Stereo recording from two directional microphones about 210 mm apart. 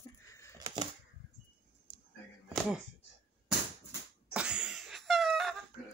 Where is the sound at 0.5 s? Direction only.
20° right (ahead or behind).